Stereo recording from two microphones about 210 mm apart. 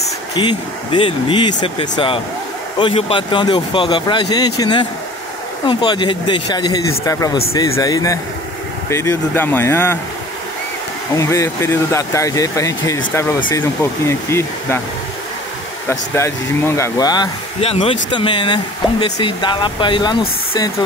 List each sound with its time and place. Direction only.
0.3 s speech: 20° left (ahead or behind)
11.1 s speech: 15° left (ahead or behind)
15.9 s speech: 15° left (ahead or behind)